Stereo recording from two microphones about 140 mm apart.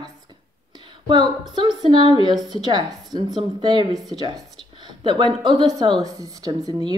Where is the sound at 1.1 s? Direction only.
30° right (ahead or behind).